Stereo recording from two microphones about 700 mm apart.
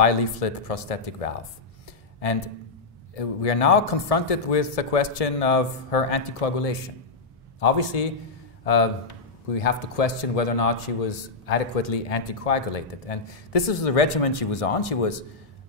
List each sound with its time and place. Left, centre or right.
0.0 s a man's voice: left
3.2 s a man's voice: left